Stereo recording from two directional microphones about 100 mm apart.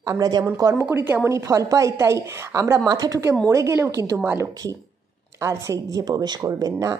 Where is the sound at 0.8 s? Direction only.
20° right (ahead or behind); by 3.2 s 40° right (ahead or behind).